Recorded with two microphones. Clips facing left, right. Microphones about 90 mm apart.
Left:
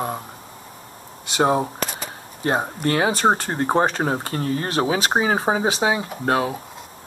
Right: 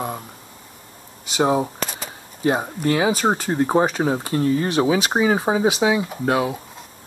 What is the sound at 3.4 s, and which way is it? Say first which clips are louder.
Speech: right 1 dB; 35° left (ahead or behind).